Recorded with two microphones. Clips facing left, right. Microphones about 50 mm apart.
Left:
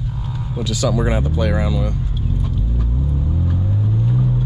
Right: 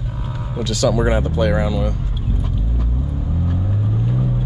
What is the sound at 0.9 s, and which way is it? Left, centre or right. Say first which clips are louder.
Speech: right 2 dB; right.